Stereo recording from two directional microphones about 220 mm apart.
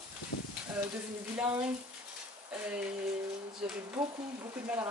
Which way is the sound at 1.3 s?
10° right (ahead or behind).